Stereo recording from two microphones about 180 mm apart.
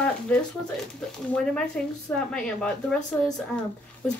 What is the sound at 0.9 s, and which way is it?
A woman's voice, 5° left (ahead or behind).